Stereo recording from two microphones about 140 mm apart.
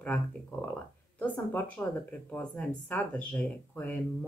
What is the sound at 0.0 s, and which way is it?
A woman's voice, 10° left (ahead or behind).